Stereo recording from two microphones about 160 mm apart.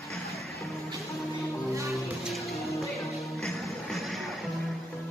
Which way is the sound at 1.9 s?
Centre (ahead or behind).